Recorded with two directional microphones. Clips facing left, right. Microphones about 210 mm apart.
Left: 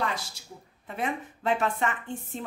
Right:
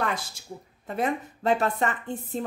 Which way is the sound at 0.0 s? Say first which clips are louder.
Right 2 dB; 50° right (ahead or behind).